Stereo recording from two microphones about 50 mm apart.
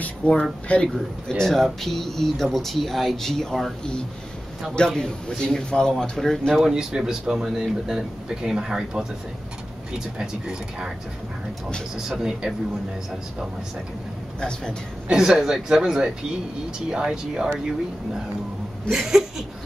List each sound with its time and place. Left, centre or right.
0.0 s speech: left
1.3 s speech: centre
4.7 s a man's voice: centre
6.6 s speech: centre
12.2 s speech: centre
14.4 s a man's voice: centre
15.0 s speech: centre
18.9 s speech: centre